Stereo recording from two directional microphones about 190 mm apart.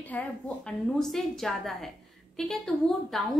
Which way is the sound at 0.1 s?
10° left (ahead or behind).